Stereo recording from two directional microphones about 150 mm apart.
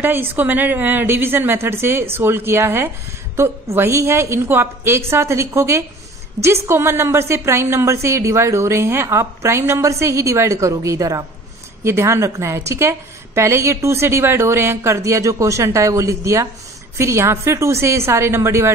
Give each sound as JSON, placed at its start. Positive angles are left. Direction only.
{"t": 0.0, "sound": "a woman's voice", "side_deg": -15}